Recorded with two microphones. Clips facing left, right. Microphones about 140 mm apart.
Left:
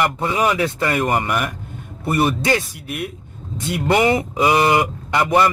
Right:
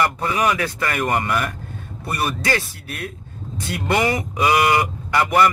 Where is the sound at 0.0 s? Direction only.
20° left (ahead or behind).